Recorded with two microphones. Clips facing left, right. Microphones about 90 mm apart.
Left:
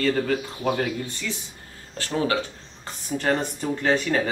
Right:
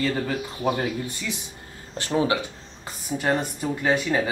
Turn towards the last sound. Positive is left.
turn(degrees=-10)  # may be behind; listen again after turning